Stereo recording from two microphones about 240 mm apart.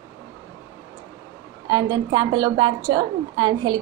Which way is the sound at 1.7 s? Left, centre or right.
Centre.